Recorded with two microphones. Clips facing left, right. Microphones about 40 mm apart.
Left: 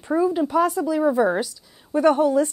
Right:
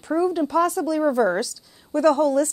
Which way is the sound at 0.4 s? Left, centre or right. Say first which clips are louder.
Left 1 dB; centre.